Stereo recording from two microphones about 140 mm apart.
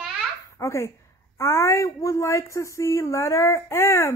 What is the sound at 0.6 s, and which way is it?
Speech, 20° left (ahead or behind).